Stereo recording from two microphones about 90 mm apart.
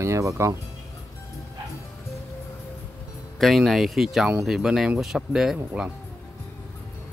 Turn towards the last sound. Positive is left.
turn(degrees=-5)  # may be behind; listen again after turning